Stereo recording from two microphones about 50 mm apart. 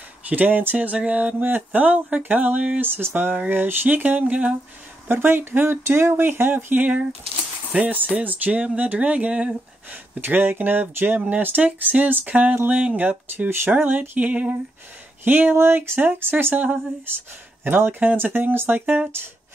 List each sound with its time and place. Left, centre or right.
0.3 s speech: right
1.0 s a sound: right
1.4 s speech: right
3.0 s speech: right
3.4 s speech: right
5.0 s speech: right
10.1 s speech: right
13.5 s speech: right
15.5 s speech: right
18.8 s speech: right